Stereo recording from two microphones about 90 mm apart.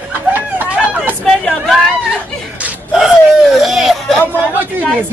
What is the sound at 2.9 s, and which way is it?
Speech, 5° right (ahead or behind).